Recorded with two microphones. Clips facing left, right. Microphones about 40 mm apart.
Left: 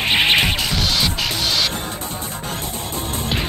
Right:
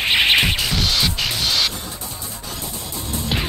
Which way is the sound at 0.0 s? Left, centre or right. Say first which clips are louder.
Even; centre.